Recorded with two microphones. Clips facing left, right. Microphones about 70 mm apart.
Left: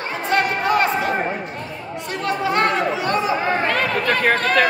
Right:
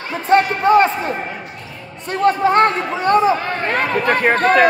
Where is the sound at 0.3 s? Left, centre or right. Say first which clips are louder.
Right 6 dB; right.